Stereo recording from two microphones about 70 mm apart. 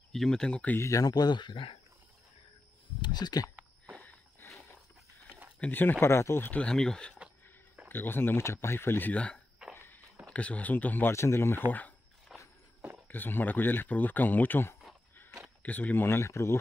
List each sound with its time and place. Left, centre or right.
0.1 s speech: centre
0.7 s speech: left
1.0 s speech: left
3.0 s a sound: left
4.4 s a sound: left
5.7 s speech: left
6.5 s speech: centre
7.9 s speech: left
9.1 s speech: centre
9.8 s a sound: left
10.2 s speech: centre
11.1 s speech: left
12.3 s walk: centre
13.1 s speech: left